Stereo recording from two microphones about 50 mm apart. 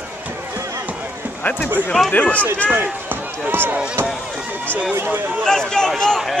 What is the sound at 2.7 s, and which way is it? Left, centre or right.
Basketball bounce, right.